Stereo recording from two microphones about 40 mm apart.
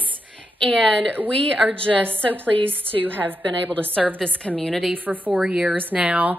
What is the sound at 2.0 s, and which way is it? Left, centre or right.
A woman's voice, right.